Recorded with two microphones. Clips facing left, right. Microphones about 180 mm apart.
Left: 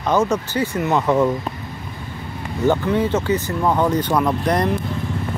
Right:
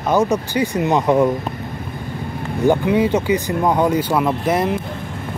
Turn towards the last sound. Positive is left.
turn(degrees=-5)  # may be behind; listen again after turning